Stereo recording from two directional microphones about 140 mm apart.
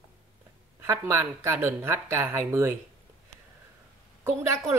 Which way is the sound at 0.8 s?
20° right (ahead or behind).